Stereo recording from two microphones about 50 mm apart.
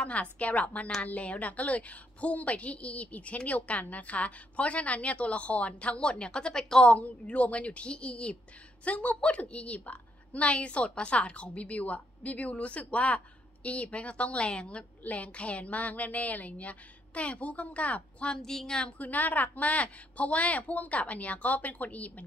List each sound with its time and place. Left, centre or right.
0.0 s a woman's voice: left
6.9 s a woman's voice: left
18.3 s speech: centre
18.9 s a woman's voice: left